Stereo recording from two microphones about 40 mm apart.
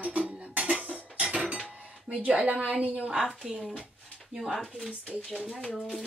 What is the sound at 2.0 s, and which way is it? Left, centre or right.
Speech, right.